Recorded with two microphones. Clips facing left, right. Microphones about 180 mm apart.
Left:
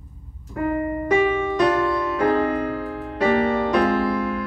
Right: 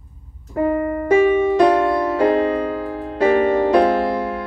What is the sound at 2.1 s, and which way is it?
Music, 25° right (ahead or behind).